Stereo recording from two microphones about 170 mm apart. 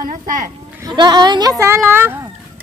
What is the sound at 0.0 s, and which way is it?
Speech, 50° right (ahead or behind).